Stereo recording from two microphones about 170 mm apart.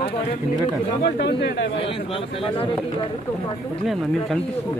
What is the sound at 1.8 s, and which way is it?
Speech, 35° left (ahead or behind).